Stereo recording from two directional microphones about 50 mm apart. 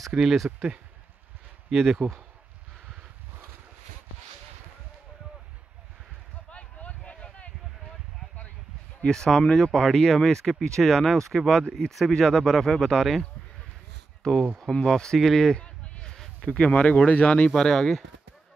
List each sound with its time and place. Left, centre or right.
0.1 s speech: centre
1.7 s speech: centre
6.5 s a sound: left
9.0 s speech: centre
16.4 s speech: left
17.5 s speech: centre